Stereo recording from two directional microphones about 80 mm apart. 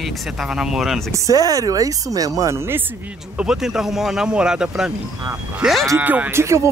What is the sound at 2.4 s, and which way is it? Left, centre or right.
Speech, right.